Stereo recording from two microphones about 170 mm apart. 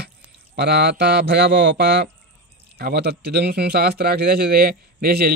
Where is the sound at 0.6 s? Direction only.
75° right (ahead or behind).